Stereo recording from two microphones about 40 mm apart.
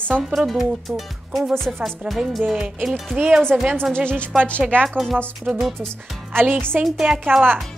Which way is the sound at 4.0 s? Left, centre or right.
Right.